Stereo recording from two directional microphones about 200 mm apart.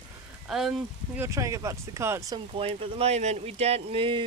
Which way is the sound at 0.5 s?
Centre (ahead or behind).